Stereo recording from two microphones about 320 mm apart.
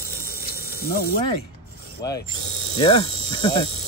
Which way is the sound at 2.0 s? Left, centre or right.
Left.